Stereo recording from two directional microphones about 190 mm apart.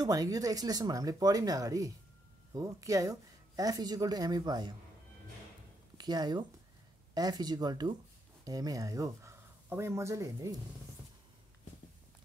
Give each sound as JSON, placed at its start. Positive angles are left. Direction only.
{"t": 0.0, "sound": "a woman's voice", "side_deg": -20}
{"t": 5.9, "sound": "a woman's voice", "side_deg": -20}